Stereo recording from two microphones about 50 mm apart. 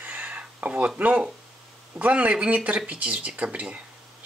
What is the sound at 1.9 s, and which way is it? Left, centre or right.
Speech, right.